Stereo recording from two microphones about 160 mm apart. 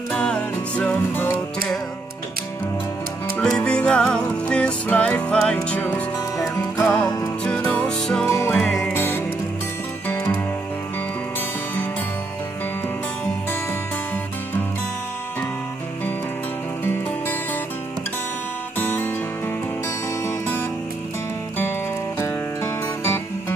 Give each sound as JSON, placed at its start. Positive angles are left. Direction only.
{"t": 0.1, "sound": "music", "side_deg": 5}
{"t": 3.3, "sound": "music", "side_deg": 5}
{"t": 10.0, "sound": "music", "side_deg": 15}
{"t": 16.8, "sound": "music", "side_deg": 15}
{"t": 18.8, "sound": "music", "side_deg": 10}
{"t": 20.2, "sound": "music", "side_deg": 15}
{"t": 22.2, "sound": "music", "side_deg": 15}